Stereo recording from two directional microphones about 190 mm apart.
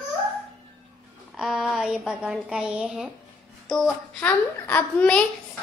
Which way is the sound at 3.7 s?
5° left (ahead or behind).